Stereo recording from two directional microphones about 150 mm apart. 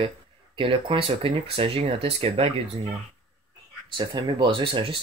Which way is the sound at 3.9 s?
30° right (ahead or behind).